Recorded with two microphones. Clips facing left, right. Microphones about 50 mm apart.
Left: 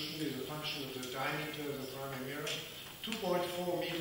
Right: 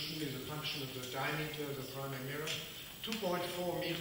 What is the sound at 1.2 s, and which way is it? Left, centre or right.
A man's voice, centre.